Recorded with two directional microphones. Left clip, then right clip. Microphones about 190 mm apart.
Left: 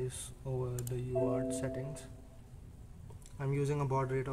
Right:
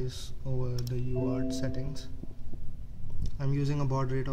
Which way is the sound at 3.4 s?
15° right (ahead or behind).